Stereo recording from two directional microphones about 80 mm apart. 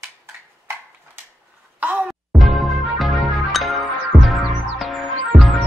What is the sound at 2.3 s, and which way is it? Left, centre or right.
Music, centre.